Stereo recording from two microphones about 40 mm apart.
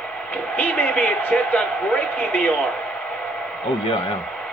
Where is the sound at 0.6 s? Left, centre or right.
Left.